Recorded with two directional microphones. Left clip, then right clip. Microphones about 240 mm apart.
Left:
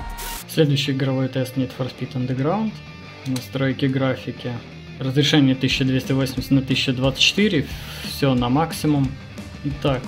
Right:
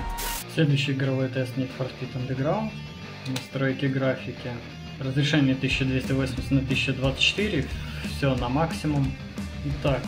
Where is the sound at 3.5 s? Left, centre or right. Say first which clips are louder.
Left 4 dB; left.